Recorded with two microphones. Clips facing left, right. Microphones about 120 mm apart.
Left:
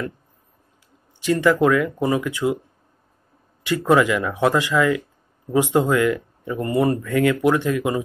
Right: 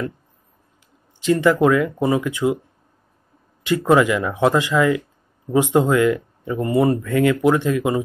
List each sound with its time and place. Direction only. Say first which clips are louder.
1.2 s speech: right 2 dB; 20° right (ahead or behind)
3.6 s speech: right 2 dB; 20° right (ahead or behind)